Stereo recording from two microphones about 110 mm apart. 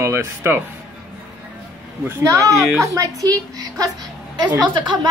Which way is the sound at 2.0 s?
25° right (ahead or behind).